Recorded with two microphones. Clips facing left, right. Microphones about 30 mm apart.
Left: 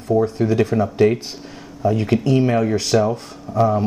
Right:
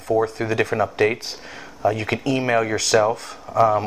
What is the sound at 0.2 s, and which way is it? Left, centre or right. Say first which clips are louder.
Speech: left 3 dB; right.